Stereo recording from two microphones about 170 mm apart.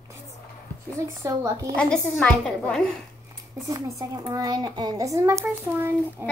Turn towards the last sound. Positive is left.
turn(degrees=-15)  # may be behind; listen again after turning